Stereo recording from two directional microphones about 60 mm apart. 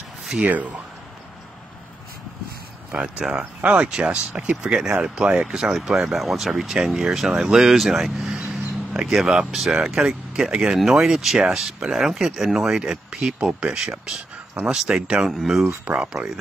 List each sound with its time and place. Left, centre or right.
0.4 s speech: right
2.9 s speech: centre
15.2 s speech: centre
15.8 s speech: right